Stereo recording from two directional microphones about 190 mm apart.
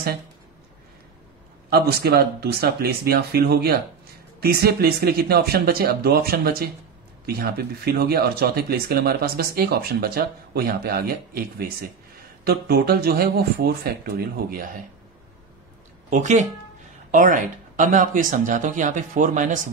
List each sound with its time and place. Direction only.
1.7 s speech: 55° right (ahead or behind)
16.1 s speech: 40° right (ahead or behind)